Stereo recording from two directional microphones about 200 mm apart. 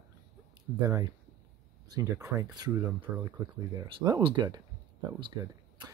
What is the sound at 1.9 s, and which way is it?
Speech, 15° right (ahead or behind).